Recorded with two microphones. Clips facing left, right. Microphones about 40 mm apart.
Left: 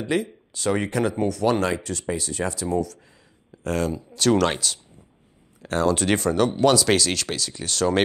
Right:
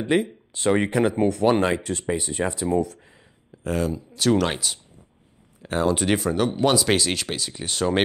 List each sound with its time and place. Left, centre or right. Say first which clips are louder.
0.0 s speech: right 3 dB; right
3.5 s speech: even; centre